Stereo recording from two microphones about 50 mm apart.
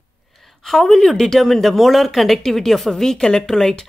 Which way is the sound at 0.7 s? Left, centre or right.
Centre.